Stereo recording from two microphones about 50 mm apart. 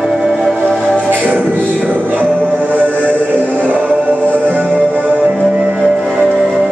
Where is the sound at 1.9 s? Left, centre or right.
Right.